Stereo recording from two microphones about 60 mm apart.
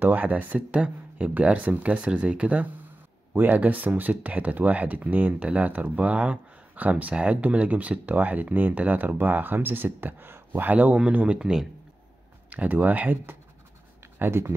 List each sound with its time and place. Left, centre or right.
0.0 s speech: right
12.4 s speech: right
14.1 s speech: right